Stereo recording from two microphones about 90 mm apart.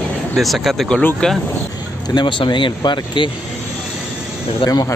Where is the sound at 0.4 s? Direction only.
Centre (ahead or behind).